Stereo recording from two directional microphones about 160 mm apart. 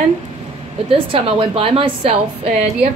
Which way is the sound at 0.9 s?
35° right (ahead or behind).